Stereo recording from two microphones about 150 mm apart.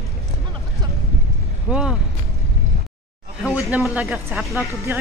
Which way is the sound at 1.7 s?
5° right (ahead or behind).